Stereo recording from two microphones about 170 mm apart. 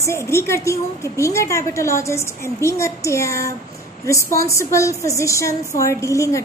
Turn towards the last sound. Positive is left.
turn(degrees=15)  # may be behind; listen again after turning